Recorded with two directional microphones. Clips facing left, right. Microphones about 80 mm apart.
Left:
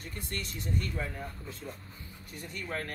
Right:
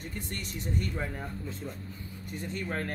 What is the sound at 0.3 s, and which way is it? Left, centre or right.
Speech, right.